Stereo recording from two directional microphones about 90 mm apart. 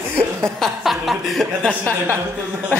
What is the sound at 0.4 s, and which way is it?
Chuckle, centre (ahead or behind).